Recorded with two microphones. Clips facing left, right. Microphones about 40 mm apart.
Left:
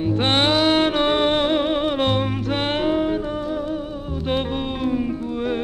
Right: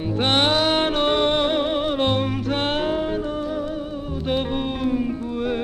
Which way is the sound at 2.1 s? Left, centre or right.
Centre.